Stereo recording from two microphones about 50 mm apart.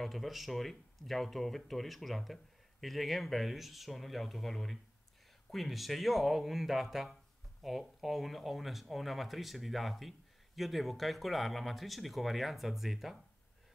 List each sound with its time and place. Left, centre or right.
0.0 s speech: centre